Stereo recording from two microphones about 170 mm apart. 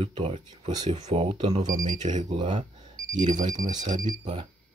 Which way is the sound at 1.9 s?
45° right (ahead or behind).